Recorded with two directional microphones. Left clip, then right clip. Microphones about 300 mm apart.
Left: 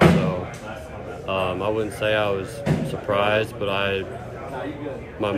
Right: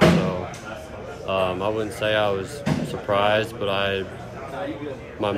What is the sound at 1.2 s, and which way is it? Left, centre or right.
Speech, centre.